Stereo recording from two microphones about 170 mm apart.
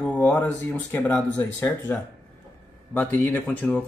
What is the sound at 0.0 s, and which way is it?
Speech, 10° left (ahead or behind).